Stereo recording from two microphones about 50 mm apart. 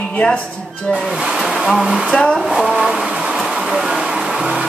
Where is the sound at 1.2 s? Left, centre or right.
Centre.